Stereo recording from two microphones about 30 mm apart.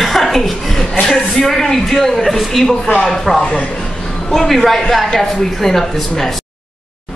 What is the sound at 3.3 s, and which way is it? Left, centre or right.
Speech, centre.